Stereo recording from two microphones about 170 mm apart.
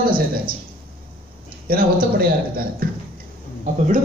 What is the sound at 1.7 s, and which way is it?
Speech, 60° right (ahead or behind).